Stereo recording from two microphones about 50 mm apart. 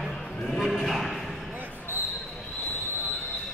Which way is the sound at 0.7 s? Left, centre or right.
Centre.